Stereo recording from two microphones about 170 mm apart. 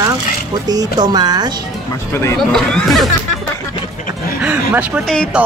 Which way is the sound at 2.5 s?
Centre (ahead or behind).